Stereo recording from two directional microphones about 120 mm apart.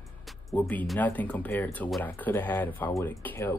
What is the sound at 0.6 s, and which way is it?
Speech, 15° left (ahead or behind).